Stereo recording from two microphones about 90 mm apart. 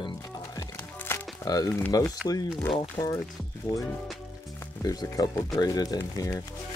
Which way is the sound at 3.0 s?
75° left (ahead or behind).